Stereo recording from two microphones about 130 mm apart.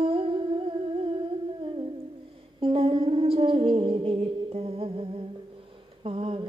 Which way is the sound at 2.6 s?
45° right (ahead or behind).